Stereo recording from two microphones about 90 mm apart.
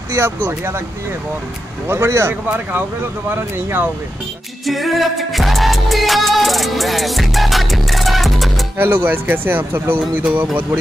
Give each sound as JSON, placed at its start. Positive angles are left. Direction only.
{"t": 0.1, "sound": "speech", "side_deg": -30}
{"t": 1.9, "sound": "speech", "side_deg": -30}
{"t": 4.6, "sound": "music", "side_deg": 0}
{"t": 8.7, "sound": "speech", "side_deg": -20}